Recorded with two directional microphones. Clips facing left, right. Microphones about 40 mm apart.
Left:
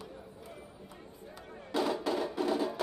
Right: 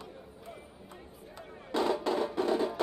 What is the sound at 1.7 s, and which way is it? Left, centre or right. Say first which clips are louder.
Music: right 2 dB; centre.